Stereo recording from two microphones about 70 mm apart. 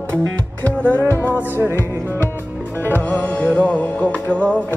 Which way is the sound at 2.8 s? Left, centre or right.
Left.